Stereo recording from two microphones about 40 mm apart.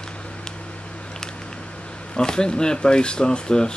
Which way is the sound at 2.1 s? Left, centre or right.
Centre.